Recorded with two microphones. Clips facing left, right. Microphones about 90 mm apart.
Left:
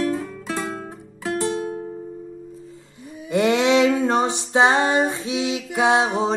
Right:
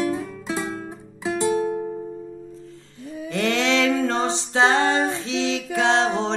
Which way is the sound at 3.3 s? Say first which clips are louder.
Left 5 dB; 15° left (ahead or behind).